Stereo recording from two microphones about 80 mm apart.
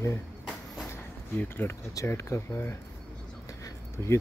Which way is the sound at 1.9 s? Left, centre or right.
Left.